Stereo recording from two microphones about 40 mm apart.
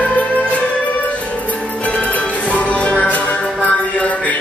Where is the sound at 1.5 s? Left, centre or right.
Left.